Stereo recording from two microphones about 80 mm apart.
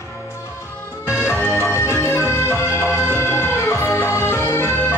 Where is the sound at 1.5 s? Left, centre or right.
Left.